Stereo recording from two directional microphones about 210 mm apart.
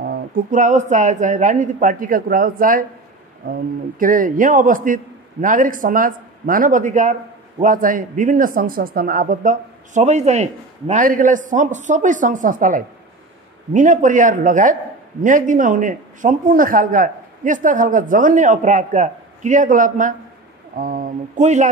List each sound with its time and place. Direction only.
0.0 s a man's voice: 45° right (ahead or behind)